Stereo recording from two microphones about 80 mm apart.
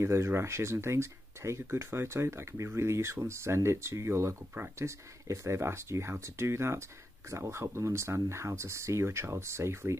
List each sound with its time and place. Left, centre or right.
0.0 s speech: right